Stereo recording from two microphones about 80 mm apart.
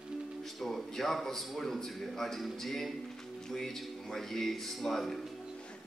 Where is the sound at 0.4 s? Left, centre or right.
Centre.